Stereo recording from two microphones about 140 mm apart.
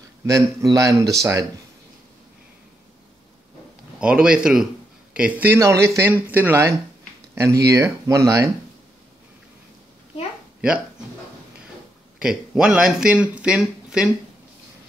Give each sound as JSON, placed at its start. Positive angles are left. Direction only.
{"t": 0.3, "sound": "speech", "side_deg": -20}
{"t": 4.0, "sound": "speech", "side_deg": -5}
{"t": 12.2, "sound": "speech", "side_deg": -5}